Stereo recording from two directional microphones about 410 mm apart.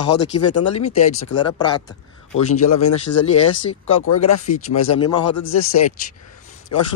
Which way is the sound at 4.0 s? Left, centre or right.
Left.